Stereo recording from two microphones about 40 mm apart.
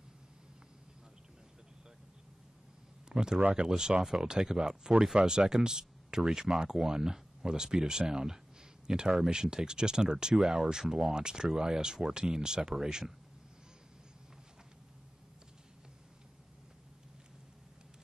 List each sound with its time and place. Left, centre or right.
3.1 s speech: centre